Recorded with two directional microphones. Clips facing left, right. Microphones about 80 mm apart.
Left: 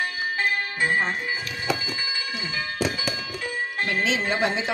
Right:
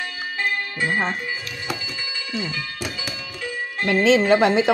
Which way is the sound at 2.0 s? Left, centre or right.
Centre.